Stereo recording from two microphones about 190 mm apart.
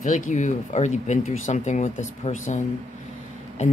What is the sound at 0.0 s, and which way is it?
Speech, 40° left (ahead or behind).